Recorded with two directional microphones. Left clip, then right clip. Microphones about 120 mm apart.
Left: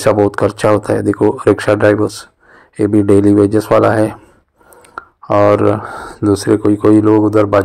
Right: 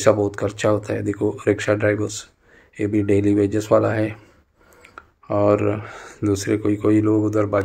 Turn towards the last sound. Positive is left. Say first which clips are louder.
# left 9 dB
turn(degrees=40)  # may be behind; listen again after turning